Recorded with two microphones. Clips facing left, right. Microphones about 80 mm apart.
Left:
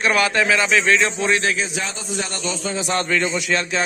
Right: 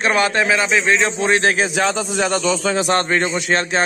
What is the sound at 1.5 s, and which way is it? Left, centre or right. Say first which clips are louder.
Speech: right 7 dB; right.